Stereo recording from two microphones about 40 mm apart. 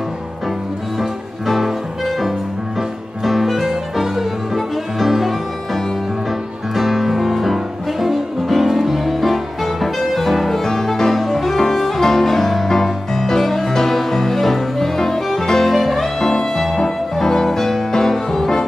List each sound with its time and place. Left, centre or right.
1.5 s music: centre
6.7 s music: centre